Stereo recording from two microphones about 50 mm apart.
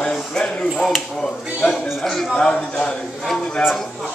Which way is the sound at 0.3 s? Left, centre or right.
Centre.